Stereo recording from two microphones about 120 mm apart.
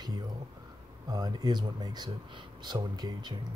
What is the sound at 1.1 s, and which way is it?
Speech, 35° right (ahead or behind).